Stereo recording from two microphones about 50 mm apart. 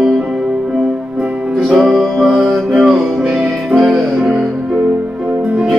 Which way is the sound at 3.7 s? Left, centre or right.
Centre.